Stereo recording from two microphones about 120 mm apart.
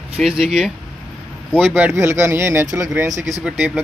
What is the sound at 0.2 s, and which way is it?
Speech, 5° right (ahead or behind).